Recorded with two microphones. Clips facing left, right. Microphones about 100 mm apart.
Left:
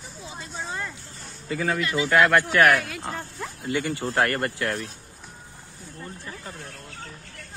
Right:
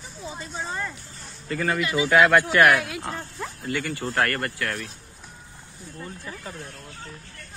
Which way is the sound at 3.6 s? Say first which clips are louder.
Left 2 dB; 20° left (ahead or behind).